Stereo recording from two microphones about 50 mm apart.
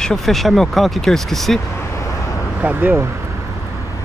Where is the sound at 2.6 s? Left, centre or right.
Right.